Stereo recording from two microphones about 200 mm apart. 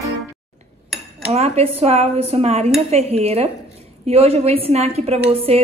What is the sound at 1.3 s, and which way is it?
A woman's voice, 30° right (ahead or behind).